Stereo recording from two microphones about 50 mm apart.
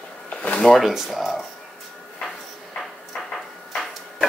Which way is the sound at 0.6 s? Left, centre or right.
Centre.